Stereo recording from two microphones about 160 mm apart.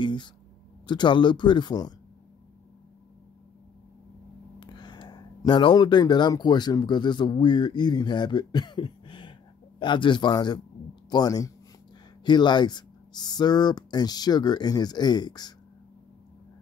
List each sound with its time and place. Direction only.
0.0 s a sound: 30° left (ahead or behind)
0.8 s speech: 30° left (ahead or behind)
4.6 s speech: 30° left (ahead or behind)